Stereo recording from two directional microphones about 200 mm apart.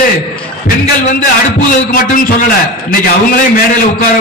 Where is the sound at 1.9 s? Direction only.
45° left (ahead or behind).